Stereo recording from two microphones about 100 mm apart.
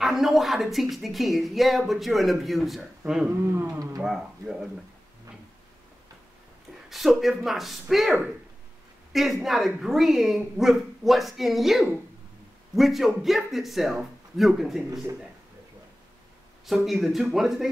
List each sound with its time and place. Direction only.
0.0 s speech: centre (ahead or behind)
3.3 s speech: 25° right (ahead or behind)
4.0 s speech: 5° right (ahead or behind)
6.9 s speech: centre (ahead or behind)
16.6 s speech: centre (ahead or behind)